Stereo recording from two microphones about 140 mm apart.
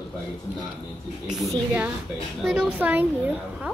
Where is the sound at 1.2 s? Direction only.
5° right (ahead or behind).